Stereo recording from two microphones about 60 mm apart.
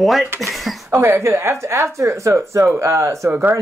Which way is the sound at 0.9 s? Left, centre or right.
Right.